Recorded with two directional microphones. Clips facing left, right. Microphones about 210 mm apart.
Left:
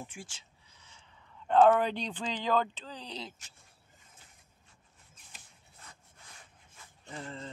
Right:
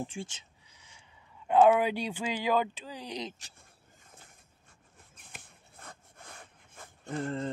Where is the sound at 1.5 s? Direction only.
10° right (ahead or behind).